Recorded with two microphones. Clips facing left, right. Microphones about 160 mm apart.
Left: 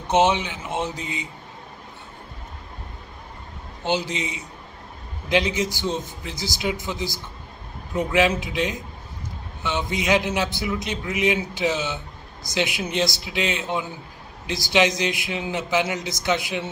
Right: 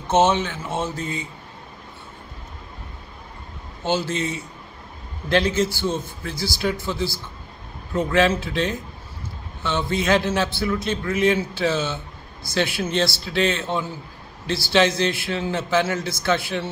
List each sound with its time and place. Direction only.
0.1 s a man's voice: 15° left (ahead or behind)
3.8 s a man's voice: 15° left (ahead or behind)